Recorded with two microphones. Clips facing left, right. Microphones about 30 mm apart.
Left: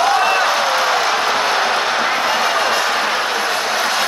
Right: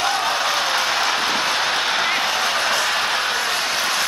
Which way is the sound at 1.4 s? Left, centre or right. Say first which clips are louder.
Left 4 dB; left.